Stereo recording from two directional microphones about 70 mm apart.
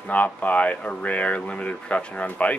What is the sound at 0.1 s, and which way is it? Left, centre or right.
Speech, left.